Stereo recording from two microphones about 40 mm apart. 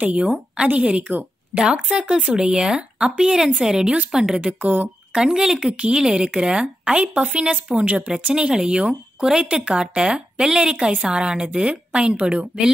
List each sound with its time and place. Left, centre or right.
0.0 s a woman's voice: right
4.4 s speech: right
5.1 s speech: centre
5.7 s speech: right
8.4 s speech: right
9.2 s a woman's voice: centre